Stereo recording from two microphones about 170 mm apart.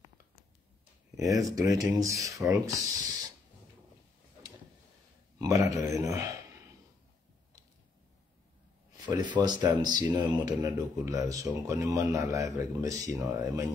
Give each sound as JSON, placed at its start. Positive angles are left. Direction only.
{"t": 1.3, "sound": "speech", "side_deg": -20}
{"t": 5.4, "sound": "speech", "side_deg": -20}
{"t": 8.9, "sound": "speech", "side_deg": -25}